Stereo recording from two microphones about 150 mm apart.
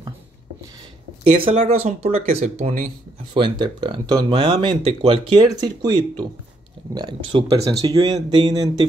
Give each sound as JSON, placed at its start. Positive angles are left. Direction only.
{"t": 1.4, "sound": "speech", "side_deg": -40}
{"t": 3.3, "sound": "speech", "side_deg": -30}